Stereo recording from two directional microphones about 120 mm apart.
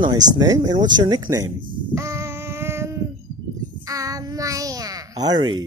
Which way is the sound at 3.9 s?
30° right (ahead or behind).